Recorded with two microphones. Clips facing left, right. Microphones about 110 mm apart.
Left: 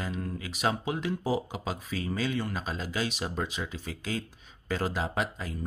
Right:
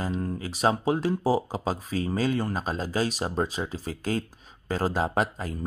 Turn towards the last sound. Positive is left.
turn(degrees=-40)  # may be behind; listen again after turning